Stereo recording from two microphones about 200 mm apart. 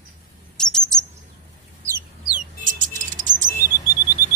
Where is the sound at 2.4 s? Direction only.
40° right (ahead or behind).